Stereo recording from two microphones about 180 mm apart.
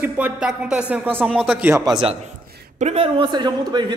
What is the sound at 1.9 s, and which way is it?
A man's voice, 30° right (ahead or behind).